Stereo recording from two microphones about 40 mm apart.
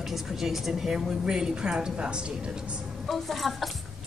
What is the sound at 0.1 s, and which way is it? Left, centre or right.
A woman's voice, centre.